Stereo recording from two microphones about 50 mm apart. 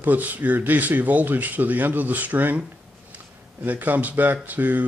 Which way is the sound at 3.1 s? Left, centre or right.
Right.